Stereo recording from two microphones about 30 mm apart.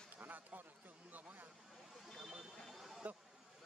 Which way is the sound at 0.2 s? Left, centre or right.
Right.